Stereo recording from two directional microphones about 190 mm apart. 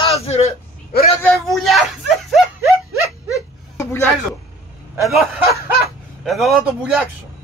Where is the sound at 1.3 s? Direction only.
Centre (ahead or behind).